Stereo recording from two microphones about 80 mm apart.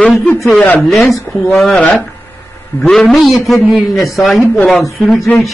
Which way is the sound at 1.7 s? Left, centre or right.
Centre.